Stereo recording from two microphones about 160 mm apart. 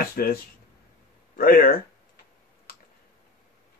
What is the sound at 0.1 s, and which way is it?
Speech, 70° left (ahead or behind).